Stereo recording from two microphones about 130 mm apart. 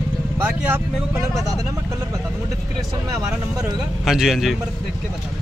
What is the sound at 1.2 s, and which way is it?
Speech, 25° right (ahead or behind).